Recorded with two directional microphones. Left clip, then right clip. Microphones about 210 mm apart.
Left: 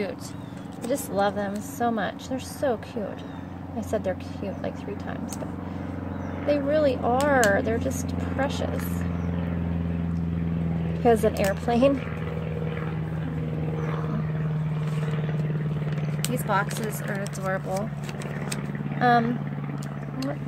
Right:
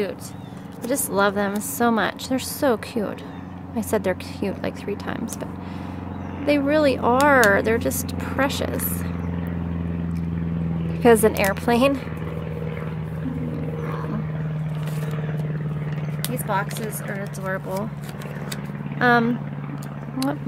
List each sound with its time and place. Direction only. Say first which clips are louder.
0.8 s a woman's voice: right 4 dB; 20° right (ahead or behind)
6.4 s a woman's voice: right 4 dB; 25° right (ahead or behind)
11.0 s a woman's voice: right 5 dB; 25° right (ahead or behind)
16.3 s speech: right 1 dB; centre (ahead or behind)
18.9 s speech: right 3 dB; 20° right (ahead or behind)